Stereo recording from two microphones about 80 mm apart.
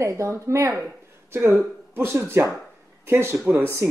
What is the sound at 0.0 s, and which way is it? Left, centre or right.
Speech, right.